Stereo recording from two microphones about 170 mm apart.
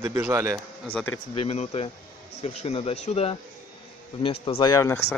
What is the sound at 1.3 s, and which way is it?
Speech, 35° left (ahead or behind).